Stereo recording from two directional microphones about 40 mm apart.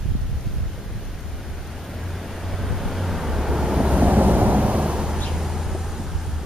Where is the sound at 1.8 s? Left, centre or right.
Centre.